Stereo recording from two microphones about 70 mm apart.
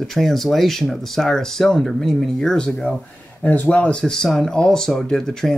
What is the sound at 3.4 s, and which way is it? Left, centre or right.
Speech, left.